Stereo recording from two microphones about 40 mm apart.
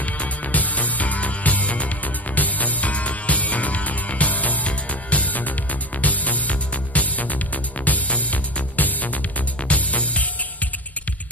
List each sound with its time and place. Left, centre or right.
0.0 s music: left